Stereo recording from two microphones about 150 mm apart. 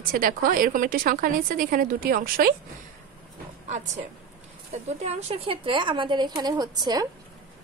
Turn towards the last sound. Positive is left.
turn(degrees=-25)  # may be behind; listen again after turning